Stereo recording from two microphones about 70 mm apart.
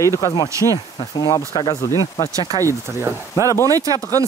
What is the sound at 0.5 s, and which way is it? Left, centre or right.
Speech, right.